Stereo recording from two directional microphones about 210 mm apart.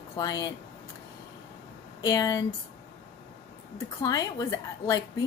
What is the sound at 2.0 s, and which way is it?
Speech, 15° left (ahead or behind).